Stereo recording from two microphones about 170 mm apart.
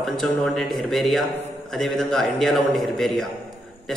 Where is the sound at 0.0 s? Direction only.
Centre (ahead or behind).